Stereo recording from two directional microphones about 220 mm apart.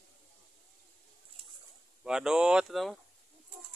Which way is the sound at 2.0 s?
5° right (ahead or behind).